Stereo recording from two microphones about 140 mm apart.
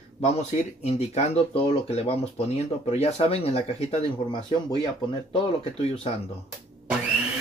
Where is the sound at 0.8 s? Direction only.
50° left (ahead or behind).